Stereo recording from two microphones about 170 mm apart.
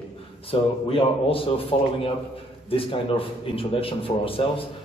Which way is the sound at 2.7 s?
35° left (ahead or behind).